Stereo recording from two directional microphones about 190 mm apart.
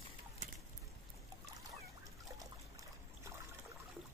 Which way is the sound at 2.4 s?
15° right (ahead or behind).